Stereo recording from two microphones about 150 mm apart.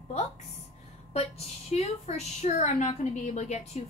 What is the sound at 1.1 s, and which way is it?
A woman's voice, 45° left (ahead or behind).